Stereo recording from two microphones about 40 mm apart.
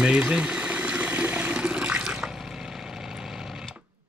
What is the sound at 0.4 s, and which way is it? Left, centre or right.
Water, right.